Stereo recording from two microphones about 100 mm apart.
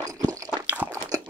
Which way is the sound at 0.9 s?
35° right (ahead or behind).